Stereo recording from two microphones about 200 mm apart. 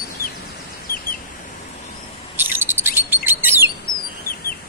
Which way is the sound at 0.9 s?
45° left (ahead or behind).